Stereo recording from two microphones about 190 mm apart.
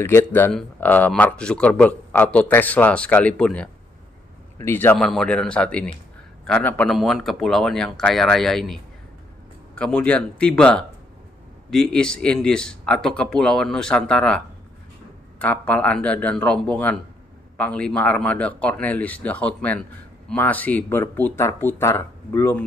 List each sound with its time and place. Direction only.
0.0 s a man's voice: 10° left (ahead or behind)
9.8 s a man's voice: 5° left (ahead or behind)